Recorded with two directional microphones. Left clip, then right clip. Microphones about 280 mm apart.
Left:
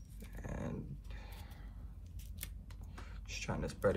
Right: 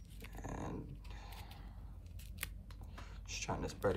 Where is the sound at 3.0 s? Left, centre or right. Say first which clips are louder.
Even; centre.